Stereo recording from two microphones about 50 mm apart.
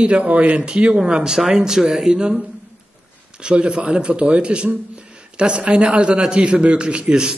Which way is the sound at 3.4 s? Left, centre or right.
Centre.